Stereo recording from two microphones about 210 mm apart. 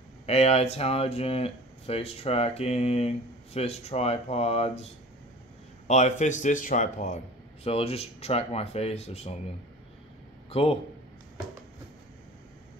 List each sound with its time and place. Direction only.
0.3 s speech: 30° left (ahead or behind)
5.9 s speech: 35° left (ahead or behind)
10.5 s a man's voice: 30° left (ahead or behind)